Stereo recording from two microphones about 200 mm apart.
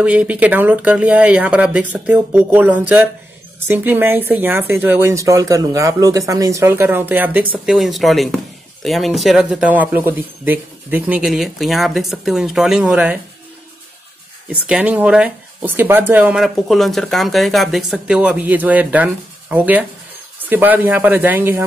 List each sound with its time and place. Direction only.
0.0 s speech: 5° right (ahead or behind)
14.7 s speech: 5° right (ahead or behind)